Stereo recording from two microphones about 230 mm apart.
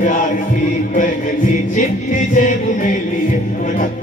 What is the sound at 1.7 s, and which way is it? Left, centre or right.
Music, left.